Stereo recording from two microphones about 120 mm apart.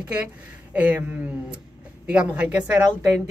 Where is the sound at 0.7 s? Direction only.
10° right (ahead or behind).